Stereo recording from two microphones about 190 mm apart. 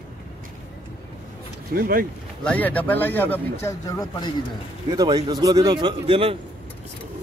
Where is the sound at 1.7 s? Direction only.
50° right (ahead or behind).